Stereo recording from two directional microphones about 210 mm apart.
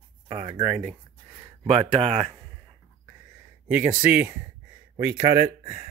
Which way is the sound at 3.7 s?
5° right (ahead or behind).